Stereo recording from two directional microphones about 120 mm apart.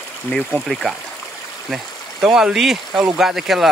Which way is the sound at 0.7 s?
Centre (ahead or behind).